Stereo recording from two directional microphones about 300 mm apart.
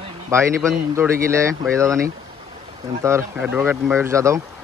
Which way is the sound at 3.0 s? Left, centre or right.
Centre.